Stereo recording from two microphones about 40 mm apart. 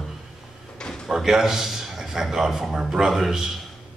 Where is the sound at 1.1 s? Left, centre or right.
Centre.